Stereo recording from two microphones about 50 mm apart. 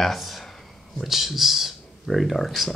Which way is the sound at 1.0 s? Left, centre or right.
Centre.